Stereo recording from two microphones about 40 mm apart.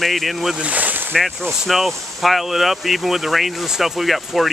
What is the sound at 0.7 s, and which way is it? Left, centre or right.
Speech, right.